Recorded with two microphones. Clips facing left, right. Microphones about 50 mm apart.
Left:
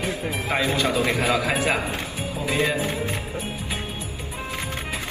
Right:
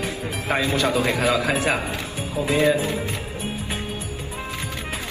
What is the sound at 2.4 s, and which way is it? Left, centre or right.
Speech, right.